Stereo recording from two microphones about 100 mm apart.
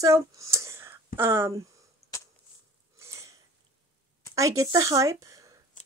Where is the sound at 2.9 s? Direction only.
30° right (ahead or behind).